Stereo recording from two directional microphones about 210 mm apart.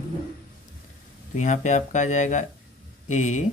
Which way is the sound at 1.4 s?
35° left (ahead or behind).